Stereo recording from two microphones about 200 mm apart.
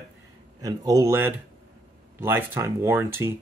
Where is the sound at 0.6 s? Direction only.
15° right (ahead or behind).